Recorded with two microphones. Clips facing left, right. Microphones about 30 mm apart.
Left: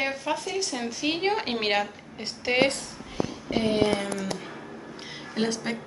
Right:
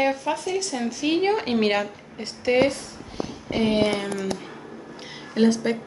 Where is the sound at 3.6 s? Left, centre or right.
Right.